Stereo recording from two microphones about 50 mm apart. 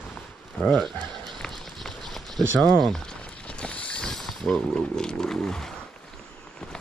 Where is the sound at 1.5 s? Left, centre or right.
Centre.